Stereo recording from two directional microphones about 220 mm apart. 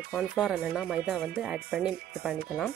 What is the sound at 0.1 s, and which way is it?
Speech, centre (ahead or behind).